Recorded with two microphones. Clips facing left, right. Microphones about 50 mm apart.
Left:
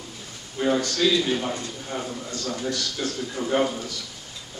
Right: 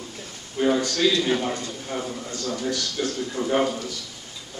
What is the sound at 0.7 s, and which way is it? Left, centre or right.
Speech, centre.